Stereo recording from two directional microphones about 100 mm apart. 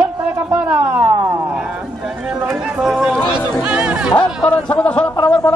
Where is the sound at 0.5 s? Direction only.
15° right (ahead or behind).